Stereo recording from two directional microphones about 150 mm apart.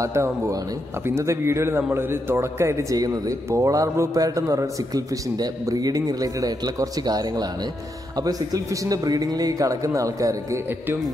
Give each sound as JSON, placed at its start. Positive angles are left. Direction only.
{"t": 0.0, "sound": "a man's voice", "side_deg": -20}